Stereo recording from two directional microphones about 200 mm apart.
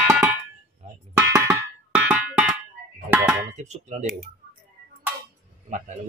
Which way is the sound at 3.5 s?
35° right (ahead or behind).